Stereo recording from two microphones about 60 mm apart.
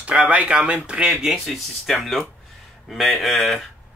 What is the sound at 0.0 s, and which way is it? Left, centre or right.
Speech, centre.